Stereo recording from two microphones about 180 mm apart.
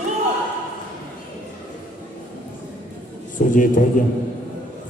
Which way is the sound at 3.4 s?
45° left (ahead or behind).